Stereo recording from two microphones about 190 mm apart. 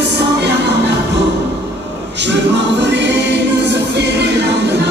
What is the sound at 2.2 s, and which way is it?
Choir, 65° right (ahead or behind).